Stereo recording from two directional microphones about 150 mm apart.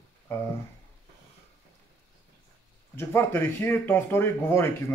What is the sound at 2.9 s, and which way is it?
Speech, 15° left (ahead or behind).